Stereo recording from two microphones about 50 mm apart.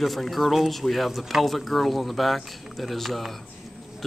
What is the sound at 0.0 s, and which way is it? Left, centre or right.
Speech, centre.